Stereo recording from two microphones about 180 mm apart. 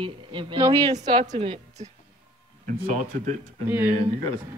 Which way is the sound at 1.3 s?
35° right (ahead or behind).